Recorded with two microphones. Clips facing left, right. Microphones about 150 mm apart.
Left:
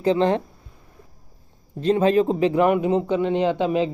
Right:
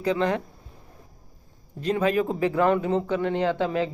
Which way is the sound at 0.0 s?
25° left (ahead or behind).